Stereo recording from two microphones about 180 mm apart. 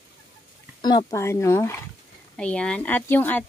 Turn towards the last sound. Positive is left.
turn(degrees=10)  # may be behind; listen again after turning